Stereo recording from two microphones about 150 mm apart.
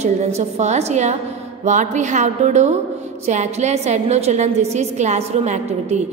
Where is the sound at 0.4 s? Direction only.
50° right (ahead or behind).